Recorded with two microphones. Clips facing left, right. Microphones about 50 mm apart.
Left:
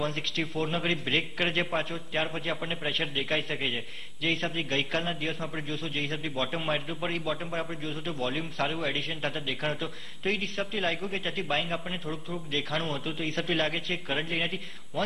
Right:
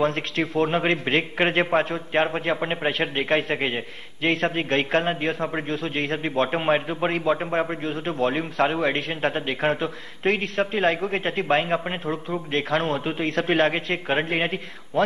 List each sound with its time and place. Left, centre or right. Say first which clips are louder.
0.0 s a man's voice: right 8 dB; right